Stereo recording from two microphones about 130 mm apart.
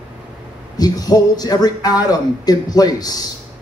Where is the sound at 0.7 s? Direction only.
30° left (ahead or behind).